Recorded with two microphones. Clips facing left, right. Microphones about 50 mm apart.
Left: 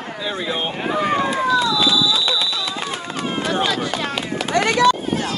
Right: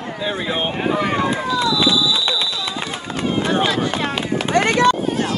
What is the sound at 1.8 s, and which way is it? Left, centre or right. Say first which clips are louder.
Clip-clop: even; right.